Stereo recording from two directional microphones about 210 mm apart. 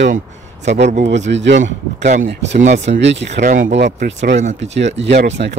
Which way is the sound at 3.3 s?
40° right (ahead or behind).